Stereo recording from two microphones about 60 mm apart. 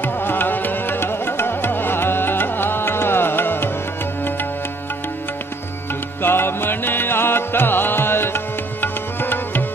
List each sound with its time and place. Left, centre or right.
0.0 s music: left
6.2 s music: left